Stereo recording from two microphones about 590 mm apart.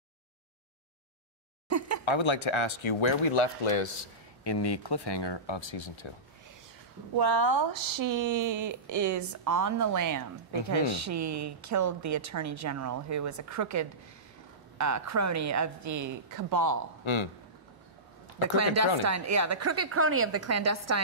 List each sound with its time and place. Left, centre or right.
1.7 s a sound: right
2.0 s speech: left
4.5 s speech: left
7.2 s speech: right
17.0 s speech: left
18.6 s speech: right